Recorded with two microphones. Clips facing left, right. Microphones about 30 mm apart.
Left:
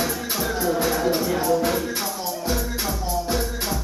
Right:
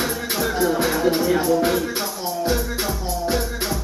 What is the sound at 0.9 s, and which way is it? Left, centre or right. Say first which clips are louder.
Music: right 3 dB; centre.